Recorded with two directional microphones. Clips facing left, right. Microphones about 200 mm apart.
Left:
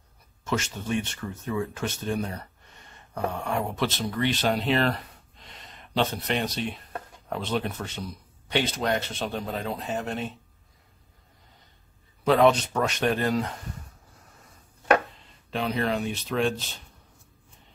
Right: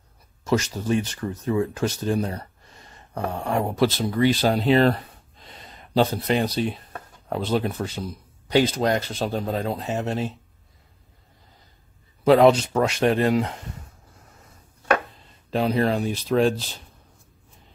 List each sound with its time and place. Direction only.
0.5 s a man's voice: 35° right (ahead or behind)
3.4 s a man's voice: 35° right (ahead or behind)
5.9 s a man's voice: 35° right (ahead or behind)
12.3 s speech: 35° right (ahead or behind)
15.5 s a man's voice: 35° right (ahead or behind)